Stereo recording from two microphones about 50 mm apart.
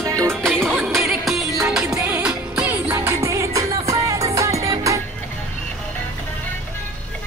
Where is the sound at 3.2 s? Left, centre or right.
Right.